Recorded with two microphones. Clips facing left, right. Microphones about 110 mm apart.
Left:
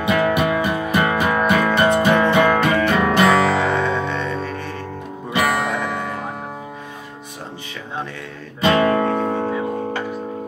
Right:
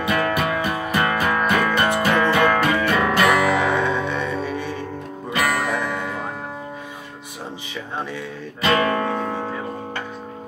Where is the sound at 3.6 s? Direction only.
10° right (ahead or behind).